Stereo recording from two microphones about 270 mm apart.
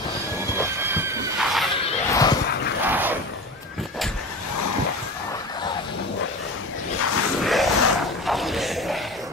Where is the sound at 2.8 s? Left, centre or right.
Centre.